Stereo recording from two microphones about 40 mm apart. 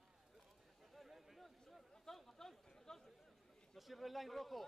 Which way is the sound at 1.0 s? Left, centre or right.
Centre.